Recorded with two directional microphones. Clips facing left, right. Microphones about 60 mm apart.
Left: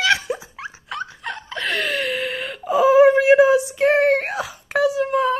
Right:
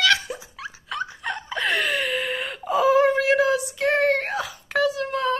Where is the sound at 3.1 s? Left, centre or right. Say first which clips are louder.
Left 6 dB; centre.